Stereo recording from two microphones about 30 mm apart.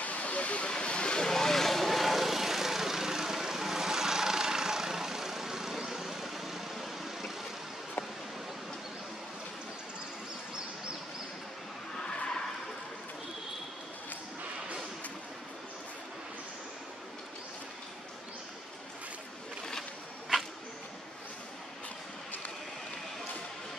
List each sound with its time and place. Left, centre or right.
0.0 s vehicle: left
1.2 s vehicle: centre
12.0 s a sound: left